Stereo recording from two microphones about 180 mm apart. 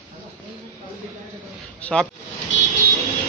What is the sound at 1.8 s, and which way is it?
Speech, 5° left (ahead or behind).